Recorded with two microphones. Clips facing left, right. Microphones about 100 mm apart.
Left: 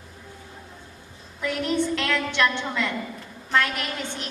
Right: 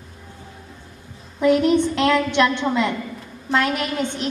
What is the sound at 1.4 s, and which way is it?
A woman's voice, 20° right (ahead or behind).